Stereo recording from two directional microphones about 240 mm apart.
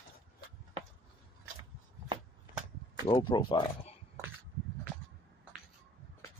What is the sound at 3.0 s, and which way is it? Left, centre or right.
Speech, centre.